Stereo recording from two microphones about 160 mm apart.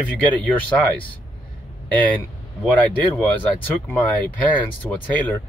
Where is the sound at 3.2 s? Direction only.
10° left (ahead or behind).